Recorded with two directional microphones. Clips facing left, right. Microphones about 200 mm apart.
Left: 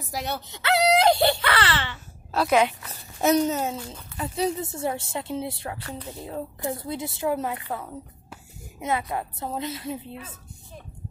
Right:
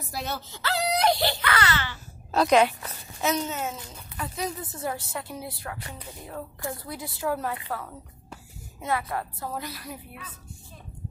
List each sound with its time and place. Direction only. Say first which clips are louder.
0.3 s speech: left 7 dB; 75° left (ahead or behind)
1.0 s a woman's voice: left 4 dB; 30° left (ahead or behind)
2.3 s speech: right 1 dB; 5° left (ahead or behind)
3.2 s a woman's voice: left 7 dB; 40° left (ahead or behind)
4.2 s a woman's voice: left 6 dB; 25° left (ahead or behind)